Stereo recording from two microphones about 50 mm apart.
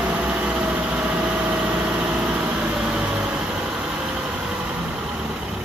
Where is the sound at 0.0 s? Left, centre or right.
Right.